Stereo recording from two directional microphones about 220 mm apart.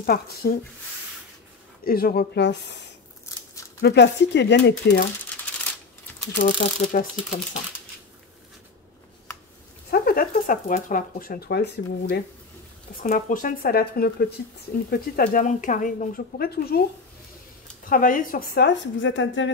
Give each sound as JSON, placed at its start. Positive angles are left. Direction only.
{"t": 0.0, "sound": "speech", "side_deg": 45}
{"t": 1.9, "sound": "speech", "side_deg": 40}
{"t": 6.4, "sound": "speech", "side_deg": 40}
{"t": 9.8, "sound": "speech", "side_deg": 45}
{"t": 13.0, "sound": "speech", "side_deg": 35}
{"t": 17.8, "sound": "speech", "side_deg": 40}